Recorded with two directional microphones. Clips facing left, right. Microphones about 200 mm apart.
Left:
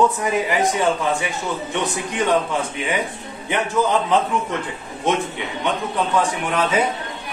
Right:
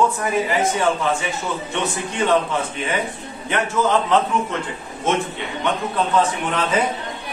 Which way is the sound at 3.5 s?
15° left (ahead or behind).